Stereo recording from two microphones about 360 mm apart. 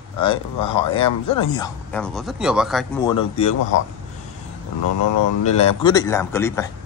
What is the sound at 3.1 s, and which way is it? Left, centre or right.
Speech, centre.